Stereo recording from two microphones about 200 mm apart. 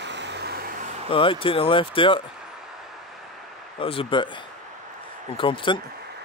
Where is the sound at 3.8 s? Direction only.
25° left (ahead or behind).